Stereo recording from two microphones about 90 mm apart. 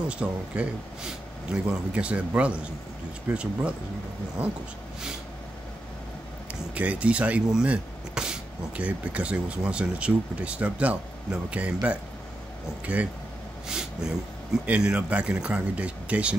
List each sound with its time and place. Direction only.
0.1 s speech: 10° right (ahead or behind)
6.7 s speech: 15° right (ahead or behind)